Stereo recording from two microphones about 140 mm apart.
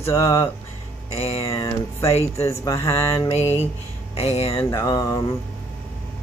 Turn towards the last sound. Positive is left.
turn(degrees=25)  # may be behind; listen again after turning